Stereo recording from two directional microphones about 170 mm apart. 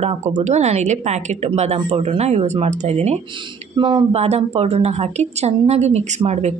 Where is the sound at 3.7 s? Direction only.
30° right (ahead or behind).